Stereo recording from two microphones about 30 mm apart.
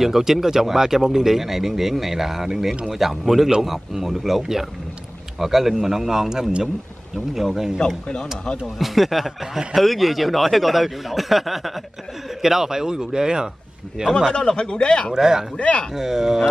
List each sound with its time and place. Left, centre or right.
0.0 s speech: centre
7.5 s a man's voice: centre; by 14.1 s right
14.3 s speech: left
15.1 s a man's voice: centre
15.5 s speech: left
15.9 s speech: centre